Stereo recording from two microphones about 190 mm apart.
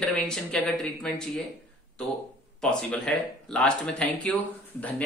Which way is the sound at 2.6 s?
5° left (ahead or behind).